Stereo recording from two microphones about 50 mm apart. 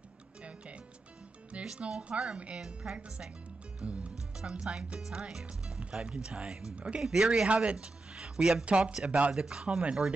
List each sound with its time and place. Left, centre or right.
0.4 s music: right
1.5 s speech: right
2.6 s speech: centre
3.8 s music: right
4.4 s speech: centre
7.4 s speech: right
8.9 s speech: centre